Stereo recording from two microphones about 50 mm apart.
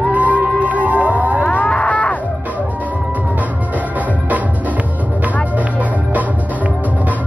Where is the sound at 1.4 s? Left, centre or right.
Left.